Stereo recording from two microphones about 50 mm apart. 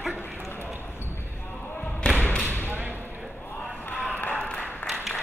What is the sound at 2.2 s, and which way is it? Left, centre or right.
Basketball bounce, left.